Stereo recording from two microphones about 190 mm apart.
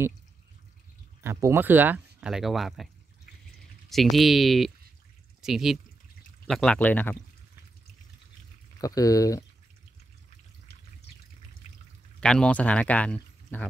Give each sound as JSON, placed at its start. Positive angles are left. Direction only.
{"t": 1.2, "sound": "speech", "side_deg": -15}
{"t": 3.9, "sound": "speech", "side_deg": 0}
{"t": 8.8, "sound": "speech", "side_deg": 20}
{"t": 11.6, "sound": "pour", "side_deg": 40}
{"t": 12.2, "sound": "speech", "side_deg": 5}